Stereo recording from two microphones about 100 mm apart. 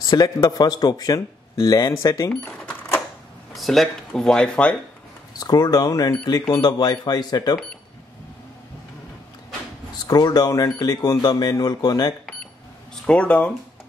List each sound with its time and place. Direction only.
0.0 s speech: 40° left (ahead or behind)
2.4 s cash register: 15° left (ahead or behind)
3.5 s speech: centre (ahead or behind)
5.4 s speech: 40° left (ahead or behind)
10.0 s speech: 40° left (ahead or behind)
12.9 s speech: 10° left (ahead or behind)